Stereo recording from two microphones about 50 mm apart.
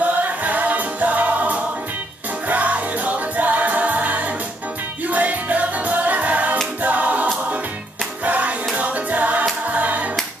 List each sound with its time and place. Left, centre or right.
0.0 s music: right
6.8 s a capella: right
8.3 s hands: right
8.7 s music: right